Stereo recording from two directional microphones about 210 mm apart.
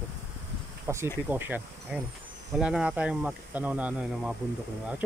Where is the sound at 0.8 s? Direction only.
10° right (ahead or behind).